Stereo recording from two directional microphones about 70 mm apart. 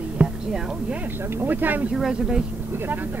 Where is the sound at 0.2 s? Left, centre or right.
Centre.